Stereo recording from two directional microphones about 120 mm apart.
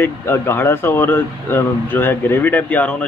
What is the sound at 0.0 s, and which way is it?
Speech, 20° left (ahead or behind).